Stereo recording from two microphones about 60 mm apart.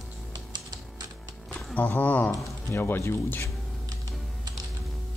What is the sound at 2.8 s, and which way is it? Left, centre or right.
Speech, left.